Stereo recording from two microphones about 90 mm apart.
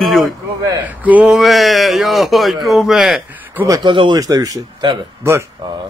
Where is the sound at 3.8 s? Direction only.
60° right (ahead or behind).